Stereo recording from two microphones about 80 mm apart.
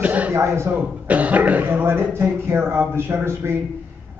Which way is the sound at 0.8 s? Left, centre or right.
Centre.